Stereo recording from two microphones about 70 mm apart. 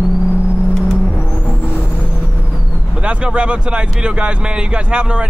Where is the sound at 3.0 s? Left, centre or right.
Centre.